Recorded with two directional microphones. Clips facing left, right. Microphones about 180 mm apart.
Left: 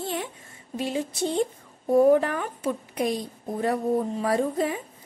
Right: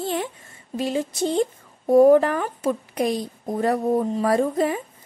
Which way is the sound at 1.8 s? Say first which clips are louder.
Right 4 dB; 40° right (ahead or behind).